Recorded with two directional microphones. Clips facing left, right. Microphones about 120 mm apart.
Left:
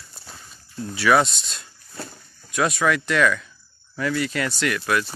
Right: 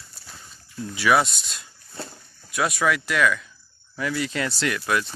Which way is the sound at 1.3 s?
25° left (ahead or behind).